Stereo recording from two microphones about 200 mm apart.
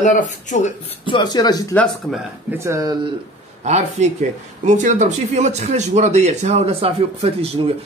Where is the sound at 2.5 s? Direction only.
15° right (ahead or behind).